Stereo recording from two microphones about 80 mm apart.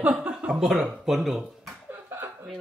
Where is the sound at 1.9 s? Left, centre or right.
Right.